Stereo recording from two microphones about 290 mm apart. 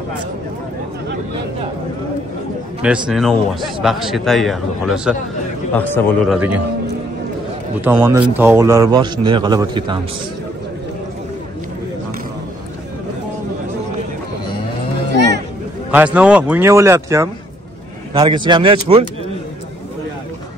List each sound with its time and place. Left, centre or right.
2.8 s a man's voice: centre
7.8 s a man's voice: centre
15.9 s a man's voice: centre